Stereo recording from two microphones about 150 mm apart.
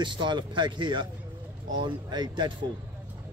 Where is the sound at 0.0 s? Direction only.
30° right (ahead or behind).